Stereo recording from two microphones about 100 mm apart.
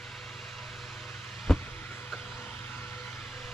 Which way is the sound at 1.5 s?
5° left (ahead or behind).